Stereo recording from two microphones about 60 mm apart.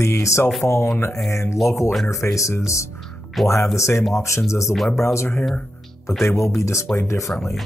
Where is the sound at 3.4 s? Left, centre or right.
Centre.